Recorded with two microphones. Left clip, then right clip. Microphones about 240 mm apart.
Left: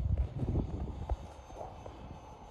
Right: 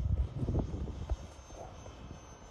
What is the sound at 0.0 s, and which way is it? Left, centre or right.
Vehicle, centre.